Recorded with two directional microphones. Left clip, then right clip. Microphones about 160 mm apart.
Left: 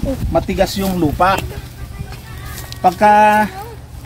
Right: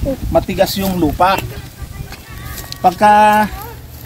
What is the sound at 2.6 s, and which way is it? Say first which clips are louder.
Speech: right 1 dB; 10° right (ahead or behind).